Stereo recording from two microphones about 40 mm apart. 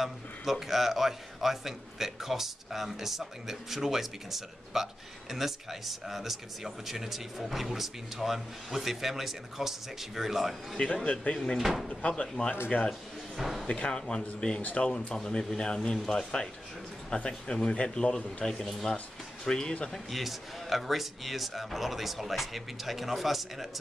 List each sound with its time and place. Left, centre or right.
0.0 s a man's voice: centre
11.1 s speech: centre
11.5 s speech: centre
12.0 s speech: left
12.7 s speech: left
13.4 s speech: centre
13.7 s speech: left
14.6 s speech: left
14.9 s speech: left
19.9 s speech: centre